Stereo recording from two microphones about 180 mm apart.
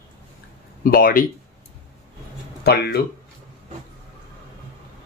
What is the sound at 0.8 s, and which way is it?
Speech, 55° left (ahead or behind).